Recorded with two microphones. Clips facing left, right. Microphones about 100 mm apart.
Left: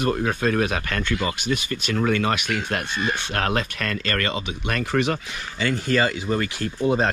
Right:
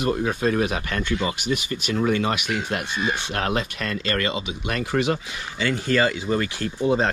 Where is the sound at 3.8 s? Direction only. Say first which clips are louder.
Even; 55° left (ahead or behind).